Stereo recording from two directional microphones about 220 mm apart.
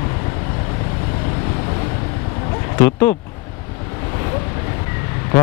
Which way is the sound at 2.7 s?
10° left (ahead or behind).